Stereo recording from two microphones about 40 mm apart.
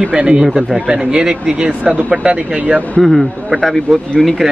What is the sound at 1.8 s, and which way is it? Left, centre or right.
Speech, right.